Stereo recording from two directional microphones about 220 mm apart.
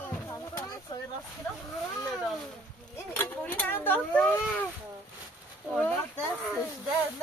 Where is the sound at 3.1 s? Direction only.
10° left (ahead or behind).